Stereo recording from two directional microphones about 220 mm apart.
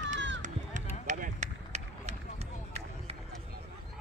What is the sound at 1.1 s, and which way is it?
Run, 35° right (ahead or behind).